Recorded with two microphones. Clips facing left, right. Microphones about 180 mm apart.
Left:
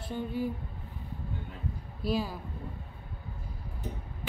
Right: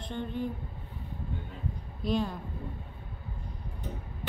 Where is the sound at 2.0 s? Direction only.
5° left (ahead or behind).